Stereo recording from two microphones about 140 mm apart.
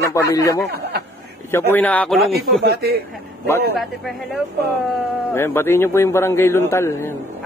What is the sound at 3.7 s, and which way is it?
Speech, centre (ahead or behind).